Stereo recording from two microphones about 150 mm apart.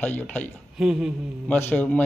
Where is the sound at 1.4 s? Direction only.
10° left (ahead or behind).